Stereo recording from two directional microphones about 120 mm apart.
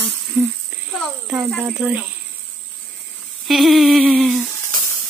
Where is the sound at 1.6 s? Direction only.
10° right (ahead or behind).